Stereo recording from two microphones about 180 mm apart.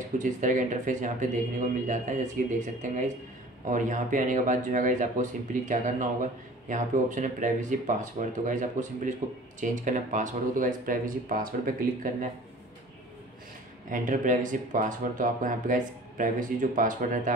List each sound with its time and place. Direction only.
0.2 s speech: 45° right (ahead or behind)
13.8 s speech: 50° right (ahead or behind)